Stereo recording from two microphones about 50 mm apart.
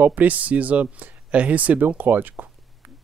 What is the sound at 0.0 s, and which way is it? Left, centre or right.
Speech, right.